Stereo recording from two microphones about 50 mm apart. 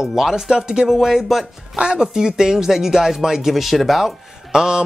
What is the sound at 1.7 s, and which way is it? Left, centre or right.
Speech, centre.